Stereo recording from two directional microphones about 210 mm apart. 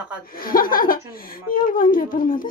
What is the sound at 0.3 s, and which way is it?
Speech, 45° left (ahead or behind).